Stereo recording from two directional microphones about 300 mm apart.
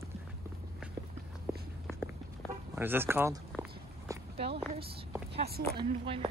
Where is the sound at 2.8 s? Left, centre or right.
Centre.